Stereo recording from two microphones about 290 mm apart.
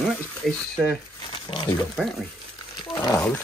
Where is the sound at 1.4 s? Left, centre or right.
Centre.